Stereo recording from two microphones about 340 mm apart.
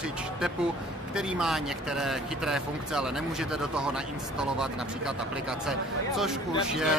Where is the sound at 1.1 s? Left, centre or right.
Centre.